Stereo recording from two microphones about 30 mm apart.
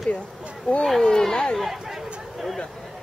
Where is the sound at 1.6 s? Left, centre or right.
Centre.